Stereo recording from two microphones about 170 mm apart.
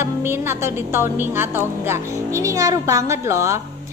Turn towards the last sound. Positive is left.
turn(degrees=-15)  # may be behind; listen again after turning